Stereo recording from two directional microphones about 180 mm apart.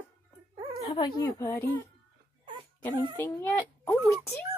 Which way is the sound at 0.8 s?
30° left (ahead or behind).